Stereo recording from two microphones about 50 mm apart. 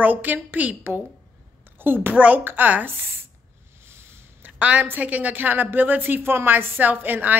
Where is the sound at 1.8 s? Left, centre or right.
Right.